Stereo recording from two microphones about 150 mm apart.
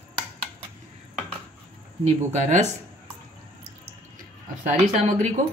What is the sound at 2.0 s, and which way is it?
Speech, 50° right (ahead or behind).